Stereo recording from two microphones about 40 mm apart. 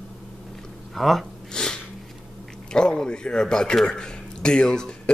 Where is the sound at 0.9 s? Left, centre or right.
Centre.